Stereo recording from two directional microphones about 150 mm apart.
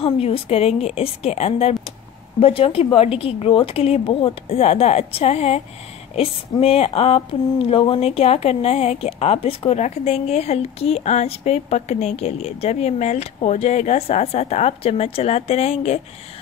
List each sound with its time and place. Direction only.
0.0 s a woman's voice: 40° left (ahead or behind)